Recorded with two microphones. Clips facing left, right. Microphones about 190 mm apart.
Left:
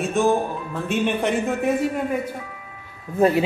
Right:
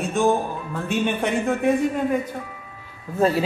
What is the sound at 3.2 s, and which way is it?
Speech, 20° left (ahead or behind).